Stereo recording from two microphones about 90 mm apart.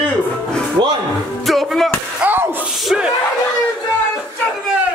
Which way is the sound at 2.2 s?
20° right (ahead or behind).